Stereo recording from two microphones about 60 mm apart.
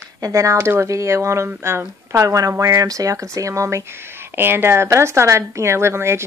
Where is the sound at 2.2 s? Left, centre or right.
Right.